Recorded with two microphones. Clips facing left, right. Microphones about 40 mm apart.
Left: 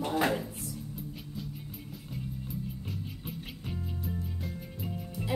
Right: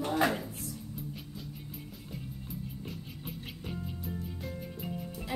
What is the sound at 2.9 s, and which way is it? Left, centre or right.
Music, centre.